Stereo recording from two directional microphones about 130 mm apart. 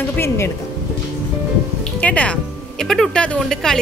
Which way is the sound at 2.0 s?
10° left (ahead or behind).